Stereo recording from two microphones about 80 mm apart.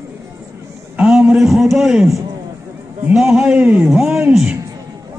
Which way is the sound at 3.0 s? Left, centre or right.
Centre.